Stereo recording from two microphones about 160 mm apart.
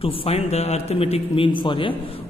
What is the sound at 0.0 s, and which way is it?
A man's voice, 35° left (ahead or behind).